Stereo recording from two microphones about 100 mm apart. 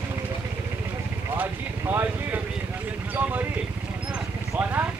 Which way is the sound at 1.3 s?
20° right (ahead or behind).